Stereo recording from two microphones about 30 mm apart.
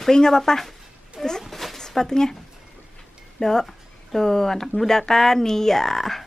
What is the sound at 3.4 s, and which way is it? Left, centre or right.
Speech, centre.